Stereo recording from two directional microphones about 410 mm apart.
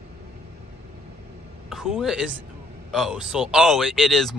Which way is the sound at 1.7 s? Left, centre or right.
Centre.